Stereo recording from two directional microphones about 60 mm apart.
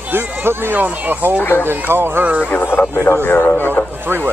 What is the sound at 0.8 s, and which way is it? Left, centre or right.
Speech, right.